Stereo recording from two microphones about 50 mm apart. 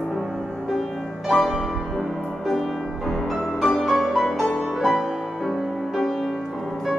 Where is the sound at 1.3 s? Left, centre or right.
Centre.